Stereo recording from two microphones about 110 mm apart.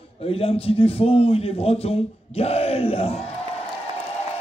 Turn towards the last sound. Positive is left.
turn(degrees=60)  # may be behind; listen again after turning